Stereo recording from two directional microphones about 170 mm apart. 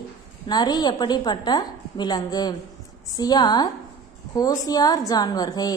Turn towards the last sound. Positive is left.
turn(degrees=25)  # may be behind; listen again after turning